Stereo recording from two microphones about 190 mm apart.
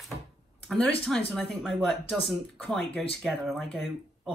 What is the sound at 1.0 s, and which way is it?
Speech, 5° left (ahead or behind).